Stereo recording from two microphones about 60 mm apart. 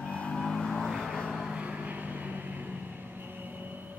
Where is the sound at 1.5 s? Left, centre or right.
Centre.